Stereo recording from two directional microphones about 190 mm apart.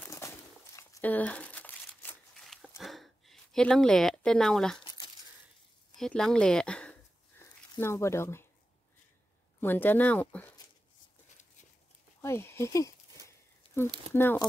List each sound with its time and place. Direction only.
0.1 s crumpling: 15° left (ahead or behind)
2.8 s a sound: centre (ahead or behind)
4.8 s crumpling: 25° left (ahead or behind)
5.9 s a sound: centre (ahead or behind)
7.7 s speech: 15° left (ahead or behind)
9.6 s speech: 10° left (ahead or behind)
12.2 s speech: 15° left (ahead or behind)
13.8 s speech: 25° right (ahead or behind)
14.1 s speech: 10° left (ahead or behind)